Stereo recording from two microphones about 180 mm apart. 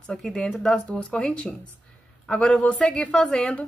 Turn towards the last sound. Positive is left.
turn(degrees=5)  # may be behind; listen again after turning